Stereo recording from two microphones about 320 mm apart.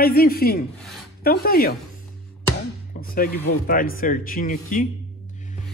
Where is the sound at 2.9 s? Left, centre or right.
Left.